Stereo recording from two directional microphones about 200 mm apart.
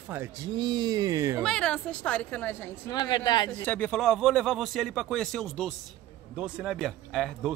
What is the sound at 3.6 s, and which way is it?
Speech, 5° left (ahead or behind).